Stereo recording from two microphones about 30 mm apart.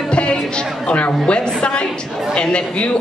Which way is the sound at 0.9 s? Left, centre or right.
Left.